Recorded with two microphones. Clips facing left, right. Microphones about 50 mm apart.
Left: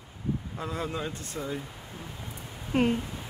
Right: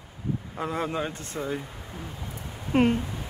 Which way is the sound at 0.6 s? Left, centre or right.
Right.